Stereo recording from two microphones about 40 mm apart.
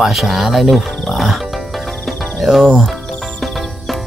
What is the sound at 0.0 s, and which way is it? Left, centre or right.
Speech, centre.